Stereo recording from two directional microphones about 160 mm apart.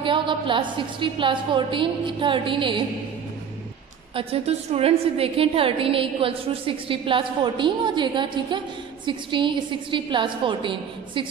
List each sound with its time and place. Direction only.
0.0 s a woman's voice: 30° right (ahead or behind)
4.1 s a woman's voice: 35° right (ahead or behind)